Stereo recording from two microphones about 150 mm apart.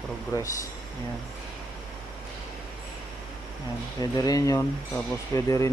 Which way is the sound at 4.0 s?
25° left (ahead or behind).